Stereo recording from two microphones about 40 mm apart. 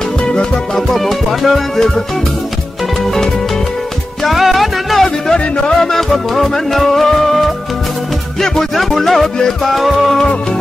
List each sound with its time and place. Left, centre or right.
0.2 s music: left
0.7 s music: centre
4.2 s music: centre
5.0 s music: centre
5.9 s music: centre